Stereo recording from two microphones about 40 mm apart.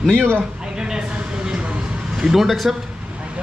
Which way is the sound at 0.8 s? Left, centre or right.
Centre.